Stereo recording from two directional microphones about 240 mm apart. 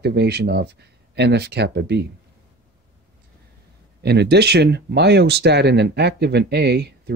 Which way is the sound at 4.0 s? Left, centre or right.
Right.